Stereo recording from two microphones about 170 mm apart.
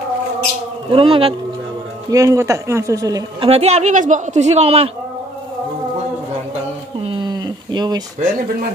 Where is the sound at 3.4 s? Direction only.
40° right (ahead or behind).